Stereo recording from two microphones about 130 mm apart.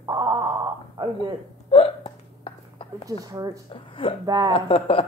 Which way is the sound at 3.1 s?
30° right (ahead or behind).